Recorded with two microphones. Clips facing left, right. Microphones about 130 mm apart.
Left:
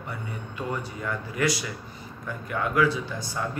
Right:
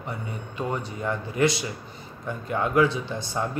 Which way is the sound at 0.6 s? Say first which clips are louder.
Right 3 dB; 25° right (ahead or behind).